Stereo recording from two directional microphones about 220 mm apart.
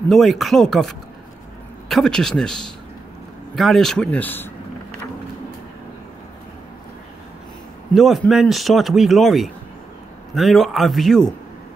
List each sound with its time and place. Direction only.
0.1 s speech: centre (ahead or behind)
7.9 s speech: centre (ahead or behind)